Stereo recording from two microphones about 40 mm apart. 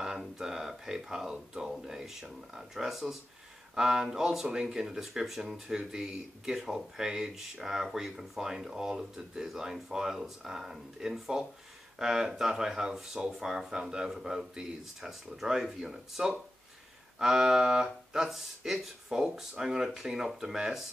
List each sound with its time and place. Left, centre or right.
0.4 s speech: centre
17.8 s speech: centre